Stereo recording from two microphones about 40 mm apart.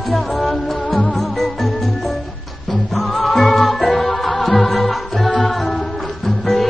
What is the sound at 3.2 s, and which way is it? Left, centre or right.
Music, centre.